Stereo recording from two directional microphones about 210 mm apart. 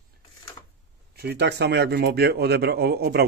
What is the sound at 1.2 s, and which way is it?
A man's voice, 50° right (ahead or behind).